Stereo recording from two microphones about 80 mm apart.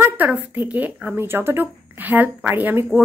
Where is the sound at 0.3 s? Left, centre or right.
Right.